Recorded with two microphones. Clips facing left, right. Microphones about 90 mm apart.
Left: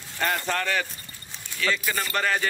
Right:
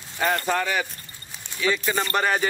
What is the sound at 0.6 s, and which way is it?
Speech, 15° right (ahead or behind).